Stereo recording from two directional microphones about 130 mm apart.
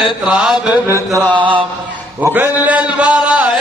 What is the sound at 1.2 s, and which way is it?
Music, 10° right (ahead or behind).